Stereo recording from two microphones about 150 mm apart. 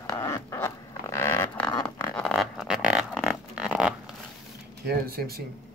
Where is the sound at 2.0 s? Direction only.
5° left (ahead or behind).